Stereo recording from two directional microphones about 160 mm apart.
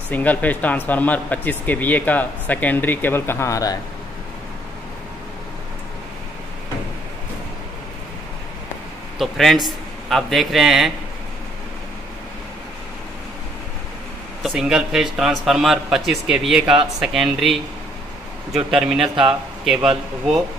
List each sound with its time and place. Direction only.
0.1 s speech: 10° left (ahead or behind)
9.2 s speech: centre (ahead or behind)
14.4 s speech: 5° right (ahead or behind)
18.7 s speech: 5° right (ahead or behind)
18.9 s a man's voice: 30° right (ahead or behind)